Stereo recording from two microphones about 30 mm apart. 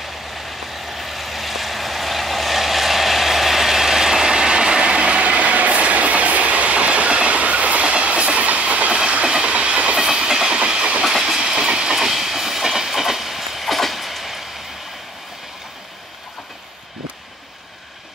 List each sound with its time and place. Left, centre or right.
0.0 s vehicle: centre; by 9.7 s right
9.9 s train: right
10.5 s train: right
11.9 s train: centre